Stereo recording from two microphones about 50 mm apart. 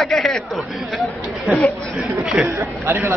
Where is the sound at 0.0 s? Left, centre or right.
Centre.